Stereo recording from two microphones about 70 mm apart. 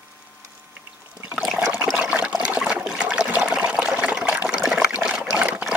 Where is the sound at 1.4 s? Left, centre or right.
Centre.